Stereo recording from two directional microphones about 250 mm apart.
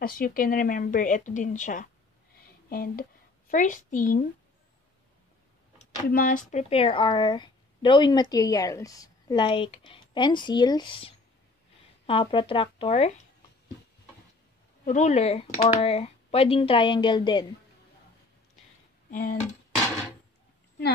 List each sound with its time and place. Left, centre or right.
0.0 s a woman's voice: left
6.0 s speech: left
14.9 s speech: left
19.0 s speech: left